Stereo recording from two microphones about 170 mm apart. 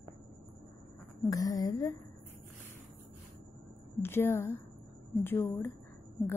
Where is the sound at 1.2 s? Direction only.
20° left (ahead or behind).